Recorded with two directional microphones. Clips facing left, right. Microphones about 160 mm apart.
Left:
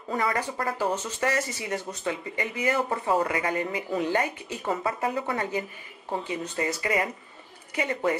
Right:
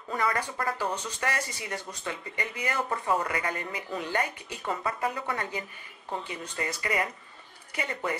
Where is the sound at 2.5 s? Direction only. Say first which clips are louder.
Left 5 dB; 10° left (ahead or behind).